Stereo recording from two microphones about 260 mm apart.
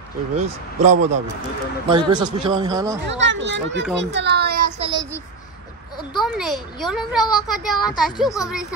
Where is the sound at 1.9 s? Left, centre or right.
Centre.